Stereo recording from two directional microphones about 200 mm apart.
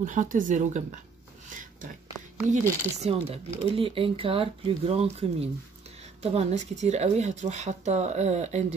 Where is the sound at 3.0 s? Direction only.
30° right (ahead or behind).